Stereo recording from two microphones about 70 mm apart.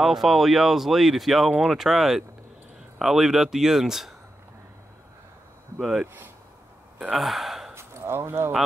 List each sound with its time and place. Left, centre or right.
0.0 s speech: centre
5.8 s speech: centre
7.1 s gasp: centre
7.7 s a sound: right